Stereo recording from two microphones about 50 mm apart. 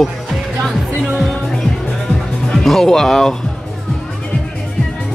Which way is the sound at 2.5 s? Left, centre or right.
Centre.